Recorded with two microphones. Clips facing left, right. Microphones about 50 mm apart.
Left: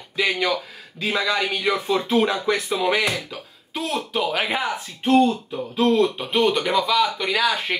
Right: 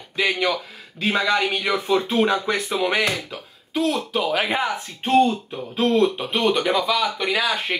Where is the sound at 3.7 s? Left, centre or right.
Centre.